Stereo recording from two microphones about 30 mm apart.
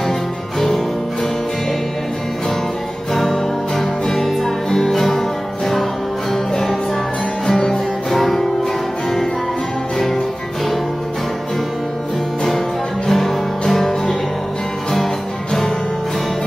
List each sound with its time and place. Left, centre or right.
0.6 s music: centre
3.1 s music: centre
6.3 s music: centre
7.4 s music: left
8.1 s music: centre
13.1 s music: centre